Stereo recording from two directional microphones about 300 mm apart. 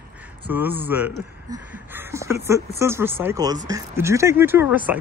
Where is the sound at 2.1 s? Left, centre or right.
Centre.